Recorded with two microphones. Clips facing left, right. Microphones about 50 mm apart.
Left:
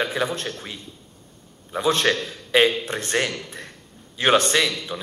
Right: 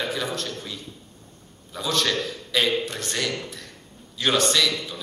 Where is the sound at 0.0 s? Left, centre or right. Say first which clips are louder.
Left 3 dB; left.